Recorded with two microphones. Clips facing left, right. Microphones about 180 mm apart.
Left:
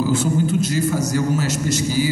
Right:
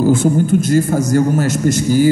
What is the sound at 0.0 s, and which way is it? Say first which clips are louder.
A man's voice: right 6 dB; 55° right (ahead or behind).